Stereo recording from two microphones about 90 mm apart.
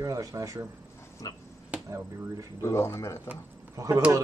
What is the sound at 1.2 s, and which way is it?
Finger snapping, 45° left (ahead or behind).